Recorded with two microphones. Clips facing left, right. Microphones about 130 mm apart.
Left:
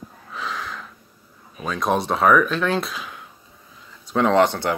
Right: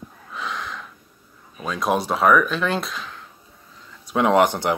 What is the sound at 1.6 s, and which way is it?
Speech, centre (ahead or behind).